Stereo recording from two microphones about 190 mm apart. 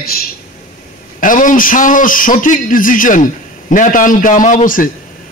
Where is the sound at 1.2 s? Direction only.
45° left (ahead or behind).